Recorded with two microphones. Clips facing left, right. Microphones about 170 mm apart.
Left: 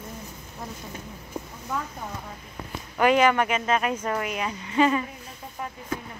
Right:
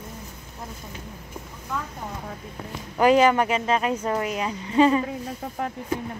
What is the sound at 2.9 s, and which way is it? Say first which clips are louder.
Speech: right 2 dB; 30° right (ahead or behind).